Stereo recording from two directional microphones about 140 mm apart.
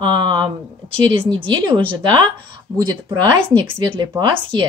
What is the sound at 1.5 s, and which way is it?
A woman's voice, 35° right (ahead or behind).